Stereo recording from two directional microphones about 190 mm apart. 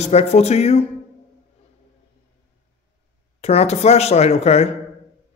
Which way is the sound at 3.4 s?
35° left (ahead or behind).